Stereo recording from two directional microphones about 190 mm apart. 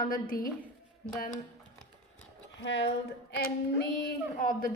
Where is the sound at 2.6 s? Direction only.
70° left (ahead or behind).